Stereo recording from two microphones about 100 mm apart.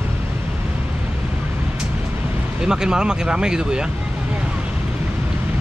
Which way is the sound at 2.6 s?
5° right (ahead or behind).